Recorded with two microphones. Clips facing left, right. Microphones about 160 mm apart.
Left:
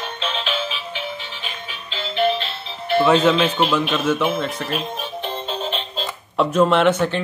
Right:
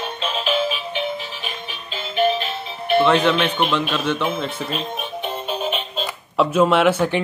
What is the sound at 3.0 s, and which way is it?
A man's voice, 5° left (ahead or behind).